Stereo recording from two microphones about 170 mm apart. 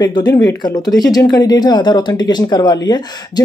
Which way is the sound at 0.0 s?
20° left (ahead or behind).